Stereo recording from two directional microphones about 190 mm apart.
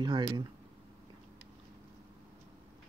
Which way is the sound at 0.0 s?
25° right (ahead or behind).